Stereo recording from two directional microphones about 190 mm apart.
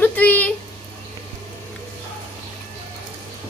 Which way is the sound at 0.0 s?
10° left (ahead or behind).